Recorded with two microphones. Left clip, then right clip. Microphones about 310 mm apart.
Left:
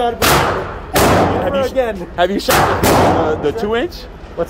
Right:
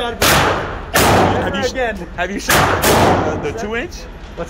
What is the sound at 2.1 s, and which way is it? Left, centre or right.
Speech, left.